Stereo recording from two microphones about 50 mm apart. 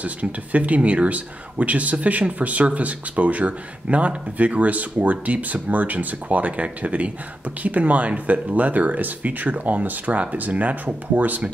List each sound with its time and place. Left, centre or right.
0.0 s speech: right